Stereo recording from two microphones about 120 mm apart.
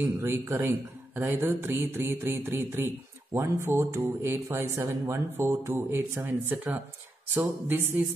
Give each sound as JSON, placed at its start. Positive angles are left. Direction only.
{"t": 0.2, "sound": "speech", "side_deg": -20}